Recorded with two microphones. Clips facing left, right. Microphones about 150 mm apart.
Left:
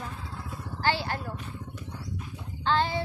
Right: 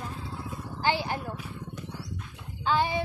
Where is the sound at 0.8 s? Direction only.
15° right (ahead or behind).